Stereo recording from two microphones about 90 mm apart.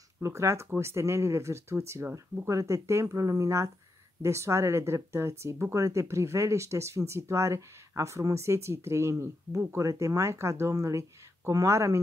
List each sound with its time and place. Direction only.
0.2 s speech: 30° right (ahead or behind)